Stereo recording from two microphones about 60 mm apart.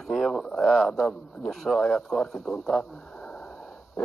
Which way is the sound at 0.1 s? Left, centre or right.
Centre.